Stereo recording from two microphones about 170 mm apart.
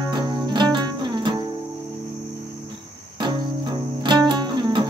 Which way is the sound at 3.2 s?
25° right (ahead or behind).